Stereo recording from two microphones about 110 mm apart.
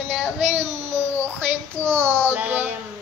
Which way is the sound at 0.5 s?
85° right.